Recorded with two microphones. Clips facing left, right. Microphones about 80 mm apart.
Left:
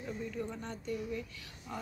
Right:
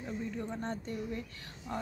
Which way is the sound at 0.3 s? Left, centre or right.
Right.